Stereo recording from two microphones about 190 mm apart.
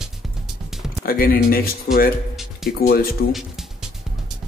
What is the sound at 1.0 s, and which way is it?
Speech, 50° left (ahead or behind).